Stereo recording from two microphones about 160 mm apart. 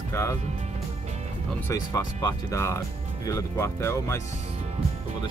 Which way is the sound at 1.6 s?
20° left (ahead or behind).